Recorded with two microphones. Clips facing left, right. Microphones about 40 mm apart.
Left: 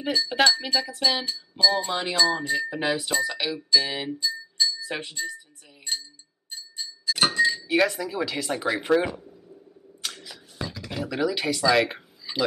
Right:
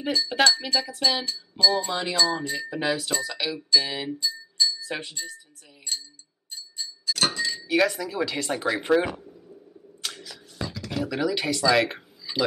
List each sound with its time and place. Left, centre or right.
0.3 s speech: centre
1.5 s music: centre
2.5 s speech: centre
6.5 s bell: centre
7.3 s chink: centre
7.6 s speech: centre
9.2 s a sound: centre